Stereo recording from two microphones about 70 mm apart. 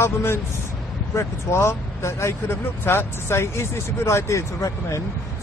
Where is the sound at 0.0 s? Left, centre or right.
Left.